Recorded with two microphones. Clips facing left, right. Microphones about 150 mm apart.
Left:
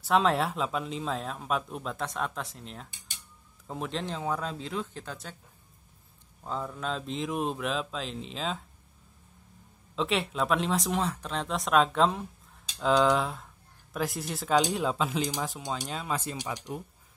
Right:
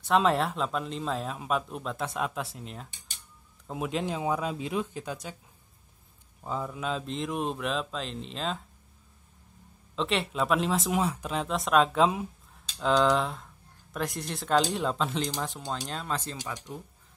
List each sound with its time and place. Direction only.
0.0 s speech: centre (ahead or behind)
6.4 s speech: 5° right (ahead or behind)
9.9 s speech: centre (ahead or behind)
16.3 s speech: 15° left (ahead or behind)